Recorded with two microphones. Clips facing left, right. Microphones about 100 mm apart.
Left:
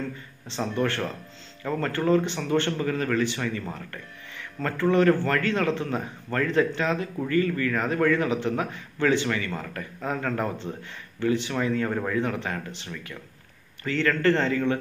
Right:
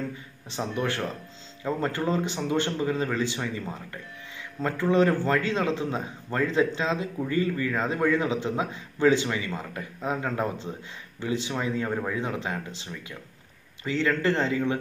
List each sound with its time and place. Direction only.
0.6 s a man's voice: 15° right (ahead or behind)